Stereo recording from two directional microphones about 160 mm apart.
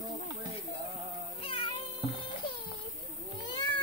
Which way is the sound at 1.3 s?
35° left (ahead or behind).